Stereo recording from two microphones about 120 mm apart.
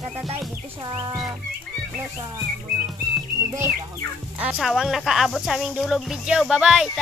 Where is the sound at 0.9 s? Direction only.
30° right (ahead or behind).